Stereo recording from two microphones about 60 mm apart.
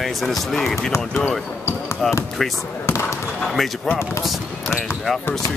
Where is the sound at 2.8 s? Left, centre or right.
Left.